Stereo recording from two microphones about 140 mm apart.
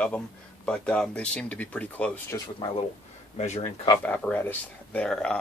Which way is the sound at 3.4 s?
50° left (ahead or behind).